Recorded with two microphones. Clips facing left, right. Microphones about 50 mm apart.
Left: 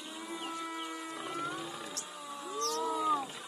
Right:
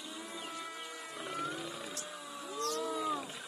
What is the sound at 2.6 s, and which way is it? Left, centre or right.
Wild animals, left.